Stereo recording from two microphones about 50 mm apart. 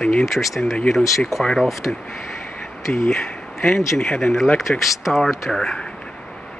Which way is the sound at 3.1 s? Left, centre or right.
Centre.